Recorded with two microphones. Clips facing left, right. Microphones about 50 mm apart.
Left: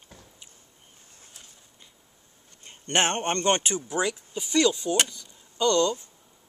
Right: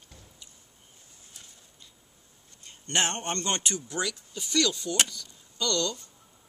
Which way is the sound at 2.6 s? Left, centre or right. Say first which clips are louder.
Left 4 dB; left.